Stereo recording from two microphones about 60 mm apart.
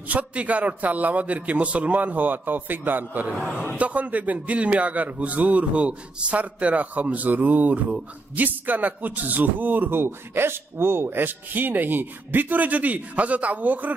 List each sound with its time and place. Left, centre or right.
0.1 s speech: right